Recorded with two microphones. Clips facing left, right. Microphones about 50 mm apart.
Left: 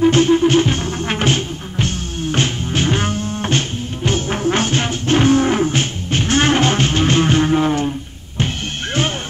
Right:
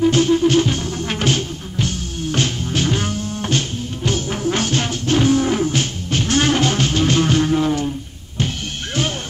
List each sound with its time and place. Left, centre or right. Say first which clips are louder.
0.0 s music: left 2 dB; left